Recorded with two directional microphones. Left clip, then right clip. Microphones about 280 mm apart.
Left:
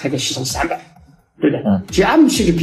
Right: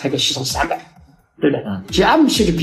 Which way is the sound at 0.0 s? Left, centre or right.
Right.